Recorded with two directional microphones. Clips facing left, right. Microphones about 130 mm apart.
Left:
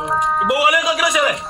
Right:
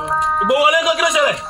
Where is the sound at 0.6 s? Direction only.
20° right (ahead or behind).